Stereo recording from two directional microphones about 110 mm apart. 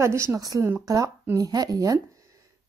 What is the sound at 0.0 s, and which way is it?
A woman's voice, 25° right (ahead or behind).